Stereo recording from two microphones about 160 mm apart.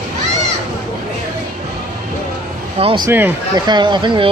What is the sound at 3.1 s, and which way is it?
Speech, 10° right (ahead or behind).